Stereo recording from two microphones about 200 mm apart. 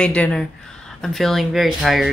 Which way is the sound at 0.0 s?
5° left (ahead or behind).